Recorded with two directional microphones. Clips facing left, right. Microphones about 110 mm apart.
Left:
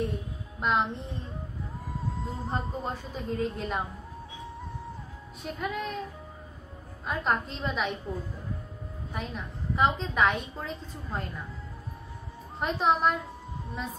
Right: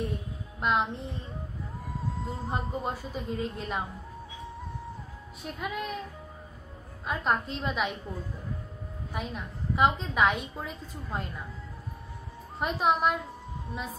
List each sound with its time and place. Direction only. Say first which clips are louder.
0.6 s a woman's voice: even; centre (ahead or behind)
5.4 s a woman's voice: left 2 dB; centre (ahead or behind)
7.1 s a woman's voice: even; centre (ahead or behind)
9.1 s a woman's voice: right 1 dB; centre (ahead or behind)
12.5 s a woman's voice: left 1 dB; centre (ahead or behind)